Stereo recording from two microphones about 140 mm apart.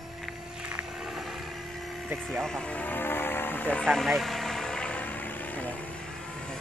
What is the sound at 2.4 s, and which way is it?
Vehicle, 5° left (ahead or behind).